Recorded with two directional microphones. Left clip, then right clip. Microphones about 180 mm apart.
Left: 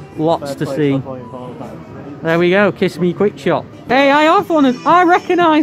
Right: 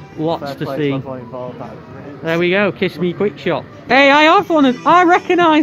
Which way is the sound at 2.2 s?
10° left (ahead or behind).